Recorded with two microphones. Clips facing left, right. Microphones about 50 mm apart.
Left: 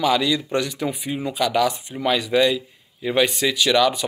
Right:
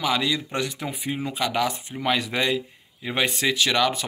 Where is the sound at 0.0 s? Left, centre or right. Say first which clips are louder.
Left 4 dB; right.